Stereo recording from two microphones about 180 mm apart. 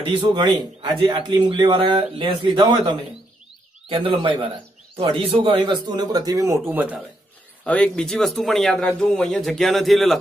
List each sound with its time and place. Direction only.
0.0 s speech: 25° right (ahead or behind); by 7.0 s 10° right (ahead or behind)
7.6 s speech: 5° left (ahead or behind)